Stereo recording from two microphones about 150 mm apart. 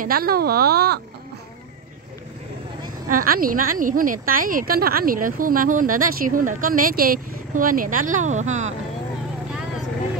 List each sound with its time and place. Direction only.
0.0 s speech: 80° right
3.1 s a woman's voice: 70° right (ahead or behind); by 8.7 s 50° right (ahead or behind)